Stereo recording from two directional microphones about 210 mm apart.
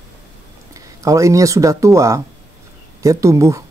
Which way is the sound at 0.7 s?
15° right (ahead or behind).